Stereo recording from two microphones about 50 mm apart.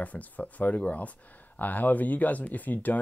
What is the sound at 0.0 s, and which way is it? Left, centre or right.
Speech, left.